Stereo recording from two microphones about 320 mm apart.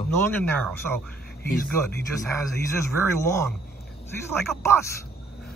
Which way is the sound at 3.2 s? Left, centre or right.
Centre.